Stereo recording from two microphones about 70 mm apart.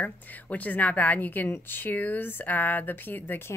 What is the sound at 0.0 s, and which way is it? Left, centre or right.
A woman's voice, left.